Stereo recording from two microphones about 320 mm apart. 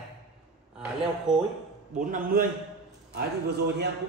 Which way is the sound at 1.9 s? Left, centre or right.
Right.